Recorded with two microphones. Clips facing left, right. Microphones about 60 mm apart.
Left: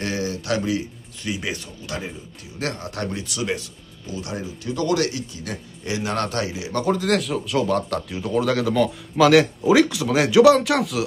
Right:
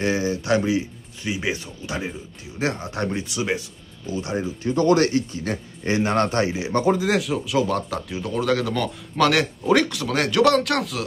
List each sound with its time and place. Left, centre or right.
0.0 s speech: right
6.9 s speech: centre
7.2 s speech: centre